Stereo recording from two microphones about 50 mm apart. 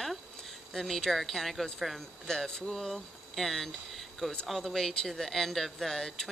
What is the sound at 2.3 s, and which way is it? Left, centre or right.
Speech, centre.